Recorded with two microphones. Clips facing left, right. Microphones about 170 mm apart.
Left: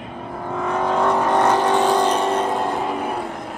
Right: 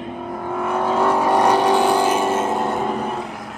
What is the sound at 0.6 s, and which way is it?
Vehicle, 10° right (ahead or behind).